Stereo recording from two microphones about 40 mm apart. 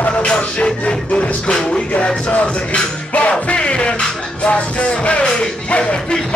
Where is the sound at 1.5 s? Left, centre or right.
Centre.